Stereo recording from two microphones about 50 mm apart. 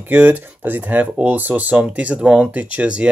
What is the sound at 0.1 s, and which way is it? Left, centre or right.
Speech, right.